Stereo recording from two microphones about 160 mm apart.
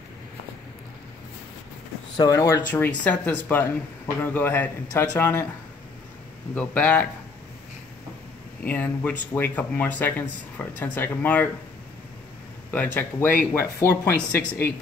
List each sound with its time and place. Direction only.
2.1 s speech: 20° left (ahead or behind)
6.5 s speech: 10° left (ahead or behind)
8.6 s speech: 10° left (ahead or behind)
12.7 s speech: 10° left (ahead or behind)